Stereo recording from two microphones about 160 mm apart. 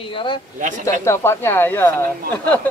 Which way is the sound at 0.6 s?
50° right (ahead or behind).